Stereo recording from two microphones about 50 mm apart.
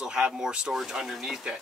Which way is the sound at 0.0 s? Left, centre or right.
Centre.